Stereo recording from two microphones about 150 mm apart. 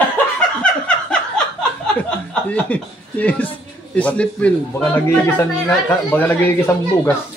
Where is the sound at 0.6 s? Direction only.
5° left (ahead or behind).